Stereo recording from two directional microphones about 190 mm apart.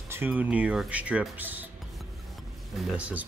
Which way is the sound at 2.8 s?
5° right (ahead or behind).